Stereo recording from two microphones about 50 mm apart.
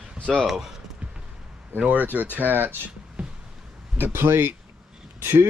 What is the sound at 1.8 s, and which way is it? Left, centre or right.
Speech, right.